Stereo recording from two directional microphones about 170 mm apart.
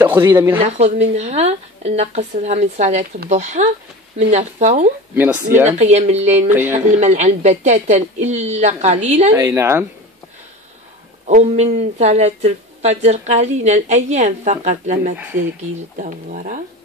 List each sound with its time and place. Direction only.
0.0 s speech: 15° right (ahead or behind)
0.6 s a woman's voice: 40° right (ahead or behind)
5.1 s speech: 10° right (ahead or behind)
5.8 s a woman's voice: 40° right (ahead or behind)
6.5 s speech: 10° right (ahead or behind)
7.0 s a woman's voice: 40° right (ahead or behind)
9.3 s speech: 15° right (ahead or behind)
11.2 s speech: 40° right (ahead or behind)